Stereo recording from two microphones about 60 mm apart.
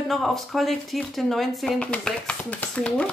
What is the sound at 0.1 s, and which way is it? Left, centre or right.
A woman's voice, centre.